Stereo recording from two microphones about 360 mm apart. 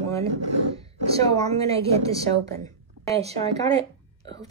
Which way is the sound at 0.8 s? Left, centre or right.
Centre.